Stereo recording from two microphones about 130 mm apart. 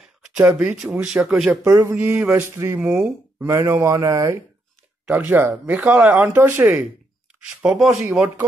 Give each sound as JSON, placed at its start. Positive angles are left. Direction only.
{"t": 0.2, "sound": "speech", "side_deg": -10}
{"t": 1.6, "sound": "speech", "side_deg": -25}
{"t": 2.9, "sound": "speech", "side_deg": -10}
{"t": 3.4, "sound": "speech", "side_deg": -20}